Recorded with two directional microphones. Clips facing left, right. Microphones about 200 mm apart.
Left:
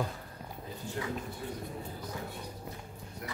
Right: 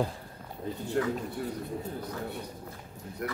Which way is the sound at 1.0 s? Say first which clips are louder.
Right 9 dB; 60° right (ahead or behind).